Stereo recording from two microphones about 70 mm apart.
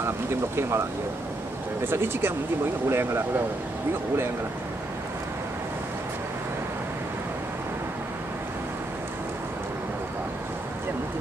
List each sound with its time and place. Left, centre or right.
0.0 s speech: right
1.9 s speech: right